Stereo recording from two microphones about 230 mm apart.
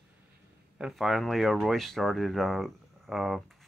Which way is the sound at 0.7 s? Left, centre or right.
Centre.